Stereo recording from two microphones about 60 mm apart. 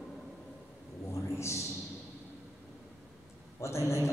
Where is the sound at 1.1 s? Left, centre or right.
Left.